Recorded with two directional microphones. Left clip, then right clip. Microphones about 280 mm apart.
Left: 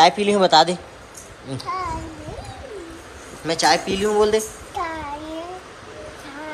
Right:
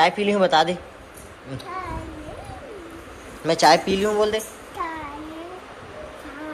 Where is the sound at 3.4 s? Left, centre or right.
Centre.